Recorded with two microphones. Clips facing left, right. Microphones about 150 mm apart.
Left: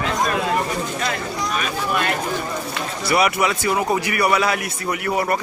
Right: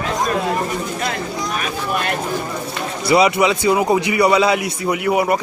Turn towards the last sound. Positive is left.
turn(degrees=-15)  # may be behind; listen again after turning